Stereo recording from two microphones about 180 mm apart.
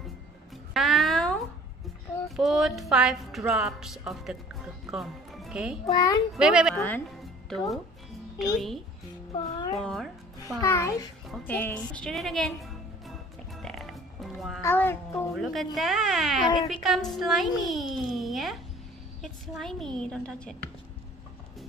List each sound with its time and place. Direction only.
0.7 s a sound: centre (ahead or behind)
2.2 s a woman's voice: centre (ahead or behind)
5.9 s a child's voice: 20° left (ahead or behind)
6.3 s a woman's voice: 5° right (ahead or behind)
6.7 s a woman's voice: 10° left (ahead or behind)
9.8 s music: centre (ahead or behind)
10.6 s a child's voice: 15° left (ahead or behind)
11.2 s music: 5° left (ahead or behind)
14.6 s a child's voice: 15° left (ahead or behind)
15.3 s a woman's voice: centre (ahead or behind)